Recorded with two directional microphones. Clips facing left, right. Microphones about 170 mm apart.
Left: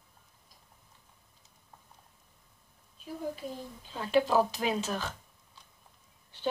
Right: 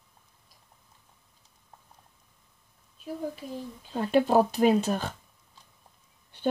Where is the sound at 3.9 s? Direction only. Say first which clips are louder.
Right 4 dB; 50° right (ahead or behind).